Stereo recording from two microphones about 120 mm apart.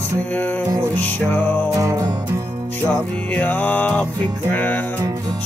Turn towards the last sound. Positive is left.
turn(degrees=-30)  # may be behind; listen again after turning